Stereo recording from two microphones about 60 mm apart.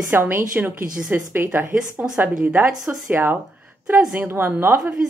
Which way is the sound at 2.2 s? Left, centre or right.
Right.